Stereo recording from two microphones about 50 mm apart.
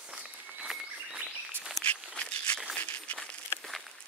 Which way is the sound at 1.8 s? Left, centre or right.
Centre.